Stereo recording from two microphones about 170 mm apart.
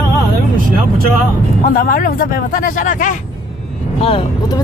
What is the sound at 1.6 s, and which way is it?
Speech, 55° left (ahead or behind).